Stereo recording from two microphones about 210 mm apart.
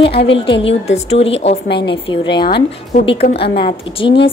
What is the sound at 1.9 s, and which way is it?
A woman's voice, 20° left (ahead or behind).